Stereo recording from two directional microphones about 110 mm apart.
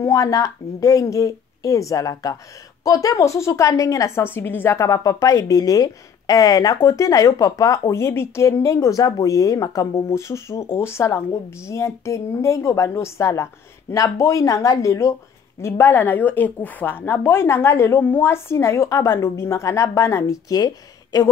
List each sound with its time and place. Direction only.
0.0 s a woman's voice: 30° left (ahead or behind)